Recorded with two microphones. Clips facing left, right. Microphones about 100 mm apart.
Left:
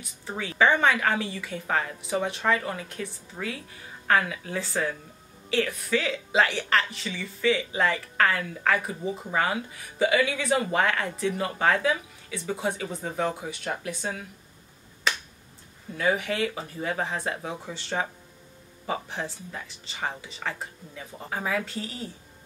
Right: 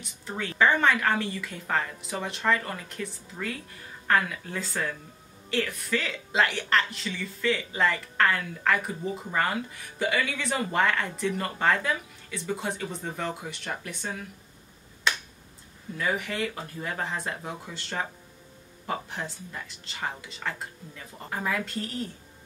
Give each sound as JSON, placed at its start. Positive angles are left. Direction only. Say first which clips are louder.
{"t": 0.4, "sound": "speech", "louder": "left 1 dB", "side_deg": 0}
{"t": 5.7, "sound": "speech", "louder": "left 3 dB", "side_deg": 0}
{"t": 16.0, "sound": "speech", "louder": "left 4 dB", "side_deg": 0}
{"t": 19.2, "sound": "speech", "louder": "left 2 dB", "side_deg": 0}